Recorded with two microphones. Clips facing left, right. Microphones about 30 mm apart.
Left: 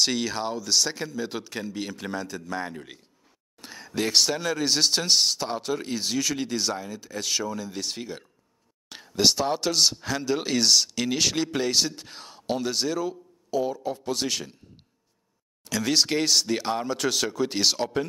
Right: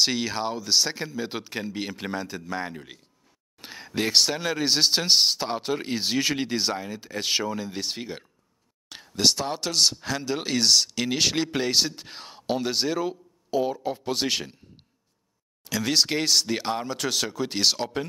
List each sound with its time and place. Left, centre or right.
0.0 s speech: centre
8.8 s speech: centre; by 14.6 s right
15.6 s speech: centre